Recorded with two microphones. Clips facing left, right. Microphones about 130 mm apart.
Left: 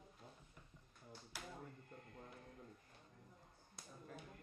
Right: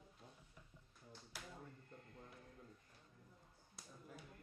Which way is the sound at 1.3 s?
Centre (ahead or behind).